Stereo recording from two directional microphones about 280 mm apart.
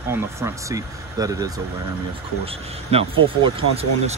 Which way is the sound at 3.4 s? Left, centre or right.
Right.